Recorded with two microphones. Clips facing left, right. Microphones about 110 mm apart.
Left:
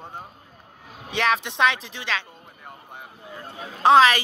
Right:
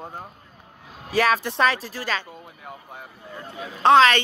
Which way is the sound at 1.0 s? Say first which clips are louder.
Right 3 dB; 5° right (ahead or behind).